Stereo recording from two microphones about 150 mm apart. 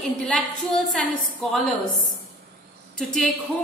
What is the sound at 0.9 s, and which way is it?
Speech, 5° left (ahead or behind).